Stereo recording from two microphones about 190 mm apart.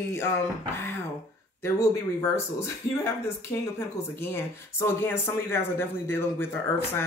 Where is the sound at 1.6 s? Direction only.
15° left (ahead or behind).